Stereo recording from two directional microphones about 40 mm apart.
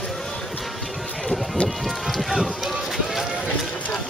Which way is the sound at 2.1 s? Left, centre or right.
Centre.